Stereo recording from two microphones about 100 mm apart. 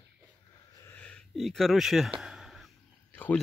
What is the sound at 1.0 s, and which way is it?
Speech, 10° left (ahead or behind).